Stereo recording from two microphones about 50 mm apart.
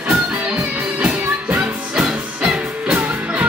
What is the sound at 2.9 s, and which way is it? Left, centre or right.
Music, right.